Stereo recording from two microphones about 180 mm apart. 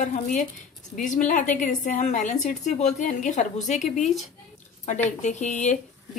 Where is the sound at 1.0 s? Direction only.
45° left (ahead or behind).